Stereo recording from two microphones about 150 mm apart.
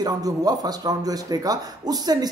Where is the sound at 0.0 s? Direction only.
25° right (ahead or behind).